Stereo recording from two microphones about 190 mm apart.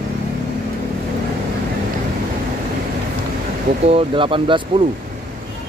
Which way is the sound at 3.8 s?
30° right (ahead or behind).